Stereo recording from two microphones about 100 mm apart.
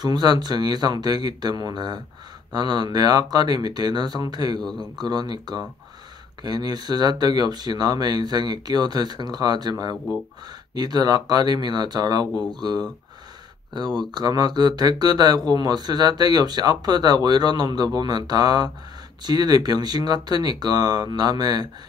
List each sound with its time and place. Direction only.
0.0 s speech: 45° right (ahead or behind)
13.9 s speech: 40° right (ahead or behind)